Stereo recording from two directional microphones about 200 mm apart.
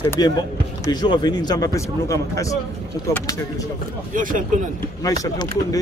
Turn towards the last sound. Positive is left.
turn(degrees=15)  # may be behind; listen again after turning